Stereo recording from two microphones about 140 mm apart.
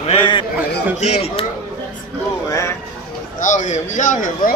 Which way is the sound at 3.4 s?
60° left (ahead or behind).